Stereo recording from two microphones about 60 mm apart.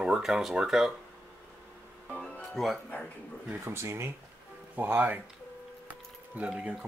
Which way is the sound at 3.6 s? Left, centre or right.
Right.